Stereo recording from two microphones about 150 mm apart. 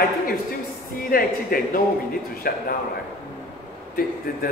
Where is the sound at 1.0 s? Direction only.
75° left (ahead or behind).